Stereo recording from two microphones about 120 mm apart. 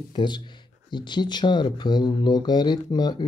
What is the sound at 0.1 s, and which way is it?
Speech, 40° left (ahead or behind).